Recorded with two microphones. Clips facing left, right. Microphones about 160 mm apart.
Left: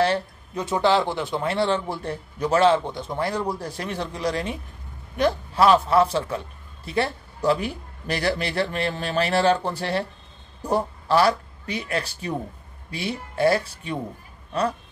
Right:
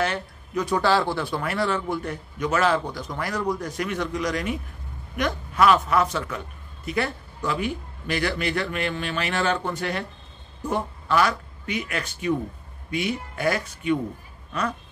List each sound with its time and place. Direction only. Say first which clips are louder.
0.0 s a man's voice: left 5 dB; 30° left (ahead or behind)